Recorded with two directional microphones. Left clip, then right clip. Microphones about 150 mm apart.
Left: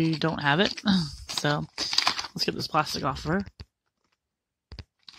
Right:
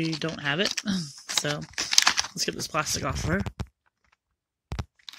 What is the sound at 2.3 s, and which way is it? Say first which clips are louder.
Speech: left 2 dB; 20° left (ahead or behind).